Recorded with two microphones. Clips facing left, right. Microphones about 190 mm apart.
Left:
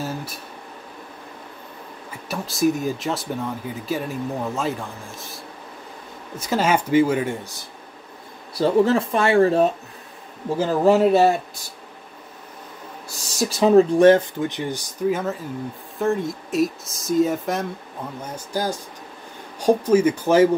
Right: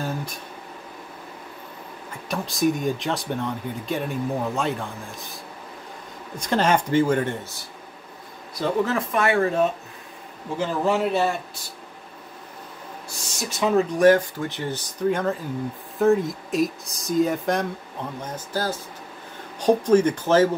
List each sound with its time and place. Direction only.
0.0 s speech: 5° left (ahead or behind)
2.2 s speech: centre (ahead or behind)
8.5 s speech: 30° left (ahead or behind)
13.3 s speech: 35° left (ahead or behind); by 14.8 s 15° left (ahead or behind)
15.0 s speech: 5° left (ahead or behind)
18.2 s speech: 10° left (ahead or behind)